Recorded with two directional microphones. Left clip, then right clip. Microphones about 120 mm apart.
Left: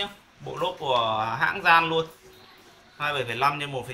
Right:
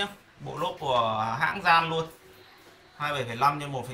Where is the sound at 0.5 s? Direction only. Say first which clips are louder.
Left 2 dB; 5° right (ahead or behind).